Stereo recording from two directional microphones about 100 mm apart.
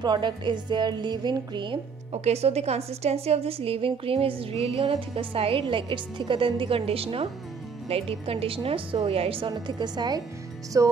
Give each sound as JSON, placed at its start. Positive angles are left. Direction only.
{"t": 0.0, "sound": "a woman's voice", "side_deg": -45}
{"t": 2.2, "sound": "a woman's voice", "side_deg": -90}
{"t": 9.5, "sound": "a woman's voice", "side_deg": -45}
{"t": 10.8, "sound": "music", "side_deg": -35}